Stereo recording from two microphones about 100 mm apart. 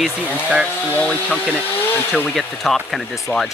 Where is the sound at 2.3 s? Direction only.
Centre (ahead or behind).